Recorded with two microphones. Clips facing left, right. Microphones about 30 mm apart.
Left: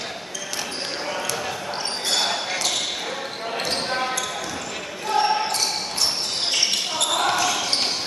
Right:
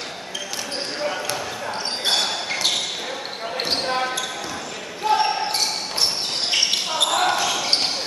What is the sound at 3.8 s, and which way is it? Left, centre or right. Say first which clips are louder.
Basketball bounce: right 2 dB; centre.